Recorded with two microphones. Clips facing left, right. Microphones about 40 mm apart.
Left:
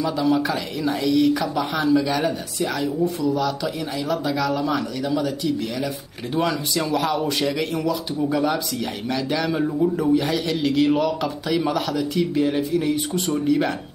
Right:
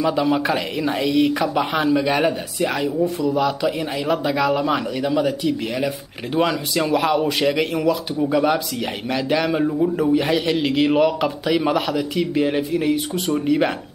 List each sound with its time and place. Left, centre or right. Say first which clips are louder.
0.0 s speech: right 2 dB; right
3.0 s speech: right 1 dB; centre
3.3 s speech: right 4 dB; right
6.3 s speech: right 3 dB; right
7.8 s speech: right 3 dB; centre
9.7 s speech: right 1 dB; centre
10.1 s speech: right 3 dB; right